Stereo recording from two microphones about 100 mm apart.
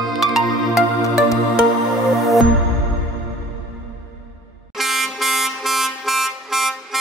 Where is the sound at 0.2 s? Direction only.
35° left (ahead or behind).